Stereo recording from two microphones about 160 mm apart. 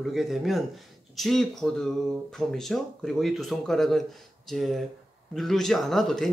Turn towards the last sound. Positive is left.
turn(degrees=0)  # may be behind; listen again after turning